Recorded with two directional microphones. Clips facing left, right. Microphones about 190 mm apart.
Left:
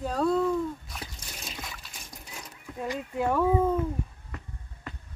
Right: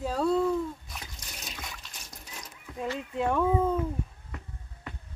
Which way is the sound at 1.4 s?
5° left (ahead or behind).